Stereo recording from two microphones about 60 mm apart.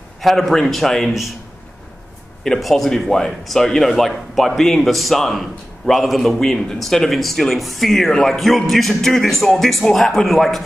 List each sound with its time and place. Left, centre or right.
0.2 s a man's voice: centre
2.4 s a man's voice: centre